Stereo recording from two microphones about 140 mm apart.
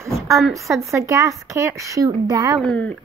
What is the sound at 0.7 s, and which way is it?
Speech, 20° right (ahead or behind).